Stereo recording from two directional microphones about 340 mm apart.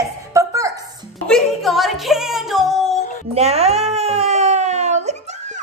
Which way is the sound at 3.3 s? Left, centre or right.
Centre.